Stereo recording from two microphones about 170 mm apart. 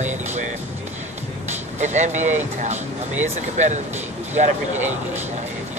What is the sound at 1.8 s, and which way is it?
Speech, 45° right (ahead or behind).